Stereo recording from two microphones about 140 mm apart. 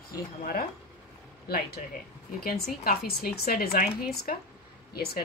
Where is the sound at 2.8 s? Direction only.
90° left.